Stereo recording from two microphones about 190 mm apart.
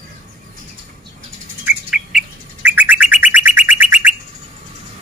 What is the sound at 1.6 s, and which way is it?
Bird, 5° right (ahead or behind).